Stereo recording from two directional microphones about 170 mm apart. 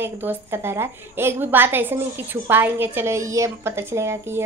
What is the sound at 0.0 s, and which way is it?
A woman's voice, 10° right (ahead or behind).